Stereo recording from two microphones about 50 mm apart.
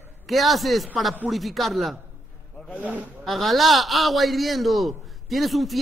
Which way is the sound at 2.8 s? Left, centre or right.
Right.